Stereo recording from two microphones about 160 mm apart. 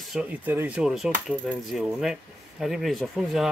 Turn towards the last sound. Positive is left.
turn(degrees=0)  # may be behind; listen again after turning